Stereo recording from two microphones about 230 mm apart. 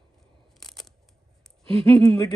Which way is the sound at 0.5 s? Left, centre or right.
Centre.